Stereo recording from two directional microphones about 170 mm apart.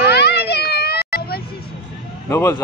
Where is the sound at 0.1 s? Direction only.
75° left (ahead or behind).